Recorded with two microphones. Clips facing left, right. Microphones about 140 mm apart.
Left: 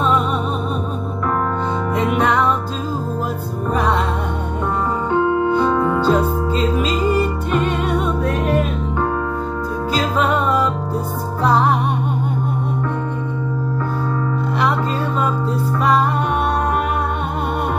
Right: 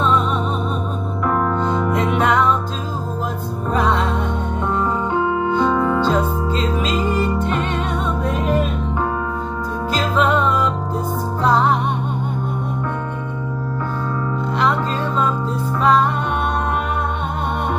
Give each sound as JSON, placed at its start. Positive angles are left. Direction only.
{"t": 5.8, "sound": "music", "side_deg": 5}